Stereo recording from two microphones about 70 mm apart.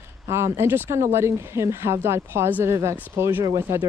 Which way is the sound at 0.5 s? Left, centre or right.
Right.